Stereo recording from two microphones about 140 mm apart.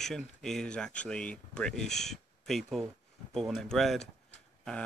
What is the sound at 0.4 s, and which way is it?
Speech, 5° left (ahead or behind).